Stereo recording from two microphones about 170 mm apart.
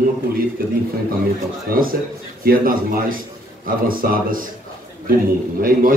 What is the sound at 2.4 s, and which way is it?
Speech, 55° right (ahead or behind).